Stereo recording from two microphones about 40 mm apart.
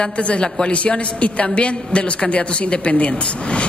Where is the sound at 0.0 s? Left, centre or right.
Left.